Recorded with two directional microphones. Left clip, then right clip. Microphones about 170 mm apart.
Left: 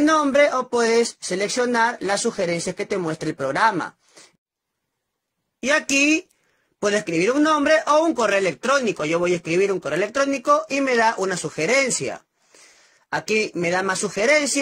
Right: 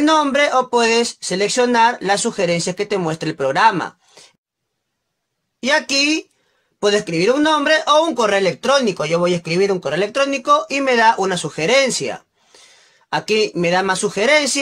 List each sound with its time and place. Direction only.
0.0 s speech: 20° left (ahead or behind)
5.6 s speech: 25° left (ahead or behind)
13.6 s speech: 25° left (ahead or behind)